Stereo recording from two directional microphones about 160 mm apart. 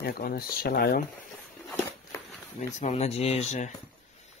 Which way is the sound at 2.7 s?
45° left (ahead or behind).